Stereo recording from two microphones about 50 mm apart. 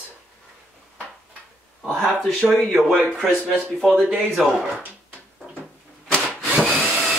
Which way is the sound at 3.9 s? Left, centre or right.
Right.